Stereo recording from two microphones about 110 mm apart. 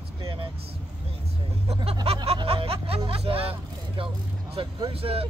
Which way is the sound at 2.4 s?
60° right (ahead or behind).